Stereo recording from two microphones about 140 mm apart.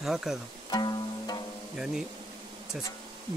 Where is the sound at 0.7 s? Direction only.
30° left (ahead or behind).